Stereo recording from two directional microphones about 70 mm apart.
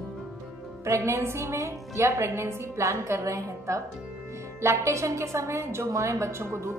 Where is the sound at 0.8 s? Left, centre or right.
Right.